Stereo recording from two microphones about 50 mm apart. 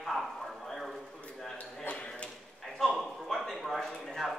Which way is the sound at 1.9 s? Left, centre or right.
Left.